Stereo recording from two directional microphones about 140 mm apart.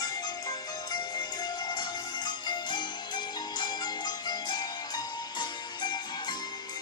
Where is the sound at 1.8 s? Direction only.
30° left (ahead or behind).